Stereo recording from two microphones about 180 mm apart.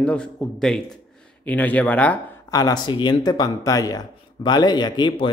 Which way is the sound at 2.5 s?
20° left (ahead or behind).